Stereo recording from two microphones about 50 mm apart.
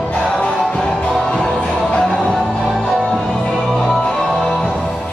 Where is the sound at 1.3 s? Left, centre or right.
Centre.